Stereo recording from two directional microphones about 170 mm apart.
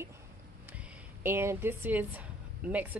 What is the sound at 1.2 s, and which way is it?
Speech, 15° right (ahead or behind).